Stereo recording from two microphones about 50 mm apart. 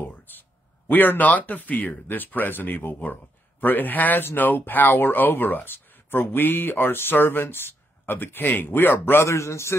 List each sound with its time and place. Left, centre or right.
0.0 s a man's voice: left
9.2 s speech: left